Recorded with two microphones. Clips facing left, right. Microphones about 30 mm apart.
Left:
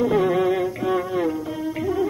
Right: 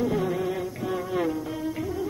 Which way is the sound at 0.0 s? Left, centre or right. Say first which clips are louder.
Left 7 dB; left.